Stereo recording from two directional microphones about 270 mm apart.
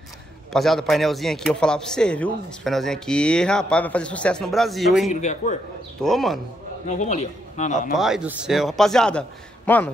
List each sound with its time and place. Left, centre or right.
0.5 s speech: centre
5.1 s a man's voice: left
6.0 s speech: centre
6.9 s a man's voice: left
7.9 s a man's voice: centre